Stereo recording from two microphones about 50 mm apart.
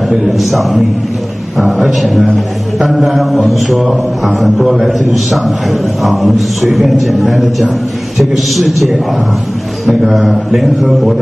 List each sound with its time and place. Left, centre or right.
0.2 s a man's voice: centre
1.9 s a man's voice: centre